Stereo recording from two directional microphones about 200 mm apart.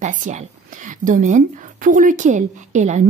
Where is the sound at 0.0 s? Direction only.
40° right (ahead or behind).